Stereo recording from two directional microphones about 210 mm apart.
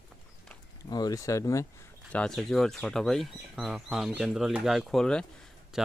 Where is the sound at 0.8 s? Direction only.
20° left (ahead or behind).